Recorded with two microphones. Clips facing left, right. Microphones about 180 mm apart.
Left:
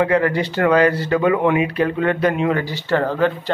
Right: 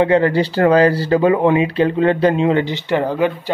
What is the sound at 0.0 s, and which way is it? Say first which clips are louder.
Speech: right 3 dB; 30° right (ahead or behind).